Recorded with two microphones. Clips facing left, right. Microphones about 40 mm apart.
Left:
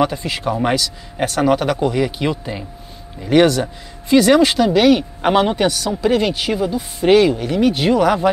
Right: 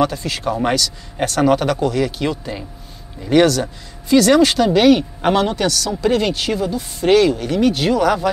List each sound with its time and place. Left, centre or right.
0.0 s a man's voice: centre
5.3 s a man's voice: centre
5.9 s a man's voice: centre